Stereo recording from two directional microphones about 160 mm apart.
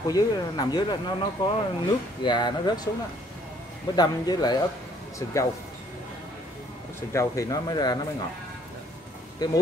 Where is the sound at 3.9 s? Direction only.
25° left (ahead or behind).